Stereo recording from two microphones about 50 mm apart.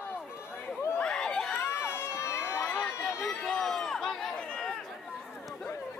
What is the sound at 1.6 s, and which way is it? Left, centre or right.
Crowd, left.